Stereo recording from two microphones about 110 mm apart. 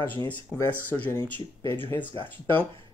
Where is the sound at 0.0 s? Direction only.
20° left (ahead or behind).